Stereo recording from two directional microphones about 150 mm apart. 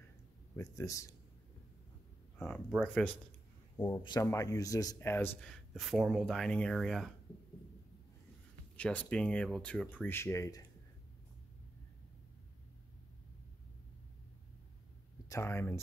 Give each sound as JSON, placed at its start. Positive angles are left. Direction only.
{"t": 0.6, "sound": "speech", "side_deg": 20}
{"t": 2.3, "sound": "speech", "side_deg": 5}
{"t": 3.7, "sound": "a man's voice", "side_deg": 20}
{"t": 8.7, "sound": "speech", "side_deg": 10}
{"t": 15.2, "sound": "speech", "side_deg": 20}